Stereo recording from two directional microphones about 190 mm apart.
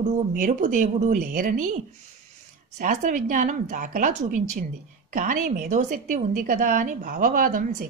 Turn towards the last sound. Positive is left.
turn(degrees=-45)  # may be behind; listen again after turning